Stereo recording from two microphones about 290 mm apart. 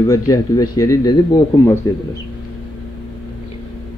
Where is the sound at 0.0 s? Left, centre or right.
Centre.